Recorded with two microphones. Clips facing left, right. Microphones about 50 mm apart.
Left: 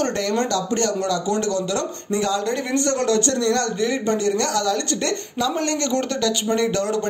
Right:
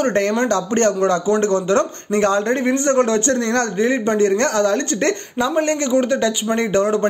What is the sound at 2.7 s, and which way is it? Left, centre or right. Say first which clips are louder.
A man's voice: right 1 dB; right.